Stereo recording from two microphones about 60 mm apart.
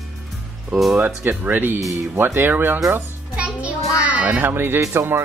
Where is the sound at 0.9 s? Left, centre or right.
Right.